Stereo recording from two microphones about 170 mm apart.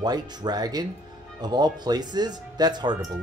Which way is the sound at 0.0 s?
25° right (ahead or behind).